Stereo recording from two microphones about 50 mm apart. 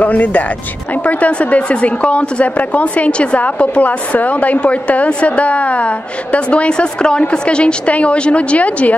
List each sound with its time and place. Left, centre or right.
0.0 s a woman's voice: left